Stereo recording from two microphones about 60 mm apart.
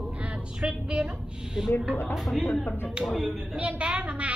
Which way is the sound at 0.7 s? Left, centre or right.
Centre.